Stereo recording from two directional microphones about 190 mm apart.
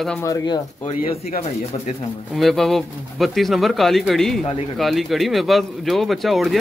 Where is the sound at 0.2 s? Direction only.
15° left (ahead or behind).